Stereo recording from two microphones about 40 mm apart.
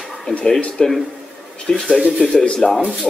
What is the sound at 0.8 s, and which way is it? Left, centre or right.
Speech, centre.